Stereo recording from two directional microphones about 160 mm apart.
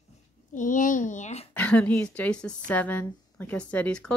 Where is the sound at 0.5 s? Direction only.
55° left (ahead or behind).